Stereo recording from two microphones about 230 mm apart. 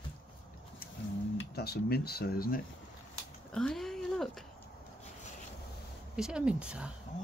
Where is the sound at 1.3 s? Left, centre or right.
Left.